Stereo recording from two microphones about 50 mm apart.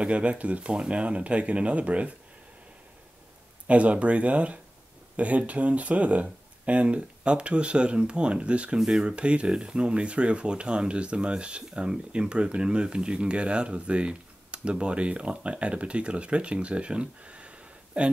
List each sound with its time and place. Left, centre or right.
0.0 s speech: right
3.6 s speech: right